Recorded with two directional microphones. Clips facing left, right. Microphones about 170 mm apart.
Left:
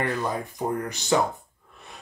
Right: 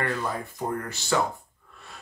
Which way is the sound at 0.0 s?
20° left (ahead or behind).